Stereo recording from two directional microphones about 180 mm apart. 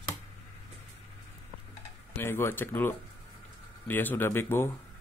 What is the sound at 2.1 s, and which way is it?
Speech, 15° left (ahead or behind).